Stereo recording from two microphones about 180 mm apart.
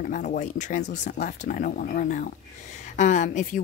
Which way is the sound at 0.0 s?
50° left (ahead or behind).